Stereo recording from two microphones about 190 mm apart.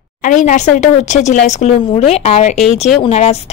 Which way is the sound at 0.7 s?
40° left (ahead or behind).